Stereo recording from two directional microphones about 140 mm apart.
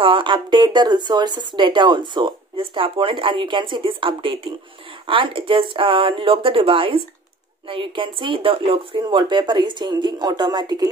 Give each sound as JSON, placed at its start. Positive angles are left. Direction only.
{"t": 0.0, "sound": "speech", "side_deg": -35}